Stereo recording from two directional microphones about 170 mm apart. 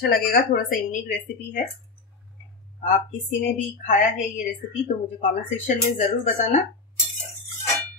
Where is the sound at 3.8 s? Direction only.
50° left (ahead or behind).